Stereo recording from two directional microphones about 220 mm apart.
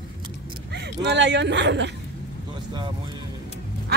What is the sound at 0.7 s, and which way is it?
Speech, 50° right (ahead or behind).